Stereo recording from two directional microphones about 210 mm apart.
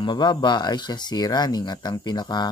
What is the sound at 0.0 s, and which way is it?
Speech, 20° left (ahead or behind).